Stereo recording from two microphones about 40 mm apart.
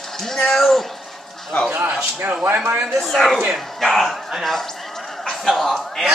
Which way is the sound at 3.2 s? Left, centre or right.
Centre.